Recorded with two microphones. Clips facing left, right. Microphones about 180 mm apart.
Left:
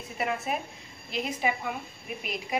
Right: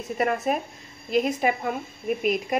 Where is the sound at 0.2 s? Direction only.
45° right (ahead or behind).